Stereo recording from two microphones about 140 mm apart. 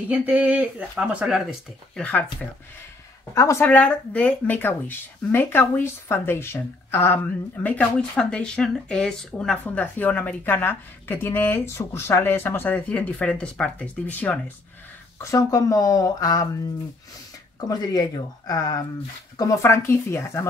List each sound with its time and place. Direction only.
0.1 s speech: 10° right (ahead or behind)
2.0 s speech: 10° left (ahead or behind)
3.3 s speech: 20° left (ahead or behind)
15.1 s speech: 25° left (ahead or behind)
17.6 s speech: 25° left (ahead or behind)